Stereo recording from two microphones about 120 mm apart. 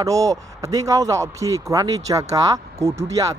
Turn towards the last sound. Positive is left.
turn(degrees=-25)  # may be behind; listen again after turning